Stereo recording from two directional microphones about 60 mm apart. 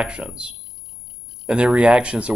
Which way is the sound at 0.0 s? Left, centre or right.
Centre.